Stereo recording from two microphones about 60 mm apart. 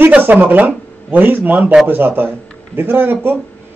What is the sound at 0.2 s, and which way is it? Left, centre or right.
A man's voice, right.